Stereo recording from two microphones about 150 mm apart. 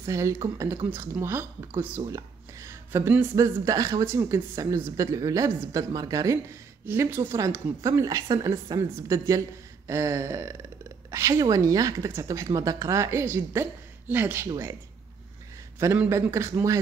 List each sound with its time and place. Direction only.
0.0 s a woman's voice: 20° right (ahead or behind)
15.8 s a man's voice: 15° right (ahead or behind)